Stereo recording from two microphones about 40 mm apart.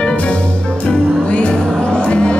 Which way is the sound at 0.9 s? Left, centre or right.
Centre.